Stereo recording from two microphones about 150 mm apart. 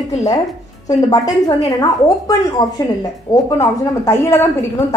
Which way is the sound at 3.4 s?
20° left (ahead or behind).